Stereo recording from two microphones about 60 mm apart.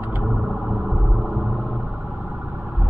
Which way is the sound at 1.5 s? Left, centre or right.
Centre.